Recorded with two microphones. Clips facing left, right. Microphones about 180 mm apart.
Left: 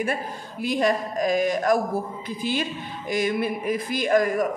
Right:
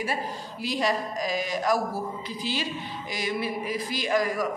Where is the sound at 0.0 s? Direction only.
50° left (ahead or behind).